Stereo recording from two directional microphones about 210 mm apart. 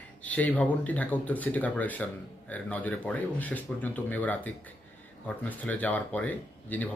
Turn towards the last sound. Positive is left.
turn(degrees=10)  # may be behind; listen again after turning